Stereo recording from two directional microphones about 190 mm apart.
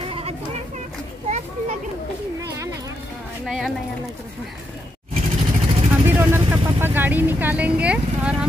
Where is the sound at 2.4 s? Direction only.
15° right (ahead or behind).